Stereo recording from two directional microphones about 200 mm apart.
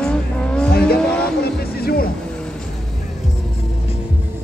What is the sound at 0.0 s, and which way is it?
Vehicle, 5° left (ahead or behind).